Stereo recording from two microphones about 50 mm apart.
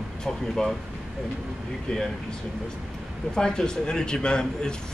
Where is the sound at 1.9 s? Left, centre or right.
Centre.